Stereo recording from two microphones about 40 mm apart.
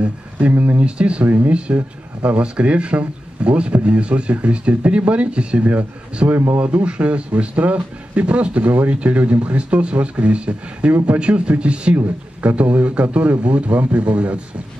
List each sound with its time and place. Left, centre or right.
0.5 s speech: right
0.7 s speech: right
1.2 s speech: right
2.2 s speech: right
6.3 s speech: right
6.6 s speech: right